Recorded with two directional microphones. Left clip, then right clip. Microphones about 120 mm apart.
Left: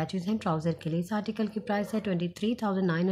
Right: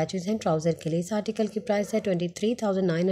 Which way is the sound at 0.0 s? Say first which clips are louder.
Right 5 dB; 25° right (ahead or behind).